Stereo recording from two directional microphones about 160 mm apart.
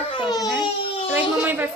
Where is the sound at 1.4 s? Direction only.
10° right (ahead or behind).